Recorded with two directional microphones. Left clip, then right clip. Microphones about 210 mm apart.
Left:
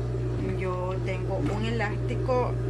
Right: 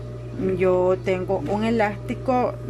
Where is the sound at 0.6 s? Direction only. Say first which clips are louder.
Right 15 dB; 50° right (ahead or behind).